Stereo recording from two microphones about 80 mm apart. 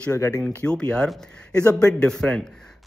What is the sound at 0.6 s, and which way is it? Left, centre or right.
A man's voice, centre.